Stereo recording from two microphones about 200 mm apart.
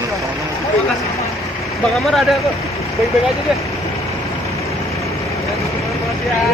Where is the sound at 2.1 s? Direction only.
Centre (ahead or behind).